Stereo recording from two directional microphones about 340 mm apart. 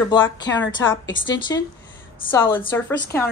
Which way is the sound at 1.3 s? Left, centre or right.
Centre.